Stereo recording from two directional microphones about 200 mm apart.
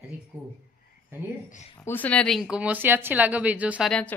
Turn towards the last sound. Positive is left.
turn(degrees=5)  # may be behind; listen again after turning